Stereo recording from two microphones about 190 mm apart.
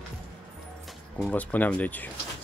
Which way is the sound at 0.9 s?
5° left (ahead or behind).